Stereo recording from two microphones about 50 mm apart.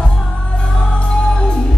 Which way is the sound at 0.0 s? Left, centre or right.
Centre.